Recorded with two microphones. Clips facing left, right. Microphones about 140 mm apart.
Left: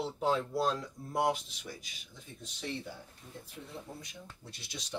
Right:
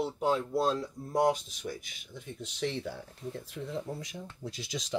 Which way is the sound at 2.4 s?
90° right.